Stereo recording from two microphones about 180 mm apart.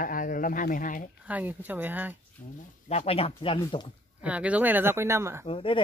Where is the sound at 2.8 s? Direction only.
35° left (ahead or behind).